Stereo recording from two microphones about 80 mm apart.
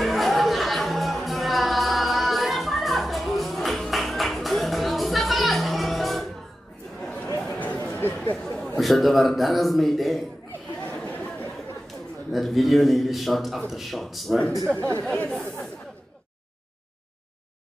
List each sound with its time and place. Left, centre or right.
0.0 s music: centre
7.5 s a sound: left
8.7 s a man's voice: centre
10.9 s chatter: left
11.9 s a man's voice: centre
14.7 s speech: centre